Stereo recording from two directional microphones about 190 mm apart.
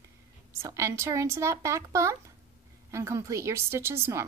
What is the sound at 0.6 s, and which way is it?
A woman's voice, 15° right (ahead or behind).